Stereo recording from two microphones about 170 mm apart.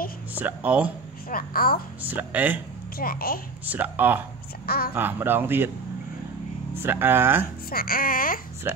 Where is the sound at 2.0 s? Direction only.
10° right (ahead or behind).